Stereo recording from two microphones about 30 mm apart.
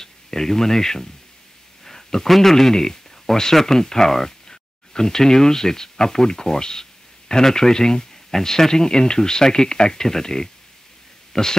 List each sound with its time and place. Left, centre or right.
0.0 s speech: centre
1.9 s a sound: centre
2.2 s speech: centre